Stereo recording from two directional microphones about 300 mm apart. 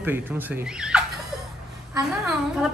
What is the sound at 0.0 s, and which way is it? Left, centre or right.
A woman's voice, centre.